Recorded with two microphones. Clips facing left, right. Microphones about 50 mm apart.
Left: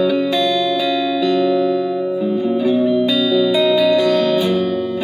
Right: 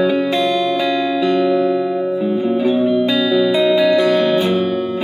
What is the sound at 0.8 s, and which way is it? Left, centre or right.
Music, right.